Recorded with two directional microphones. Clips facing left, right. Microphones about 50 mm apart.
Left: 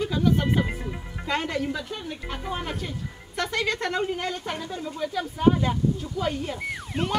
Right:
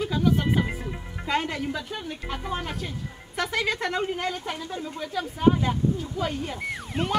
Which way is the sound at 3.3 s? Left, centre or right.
Centre.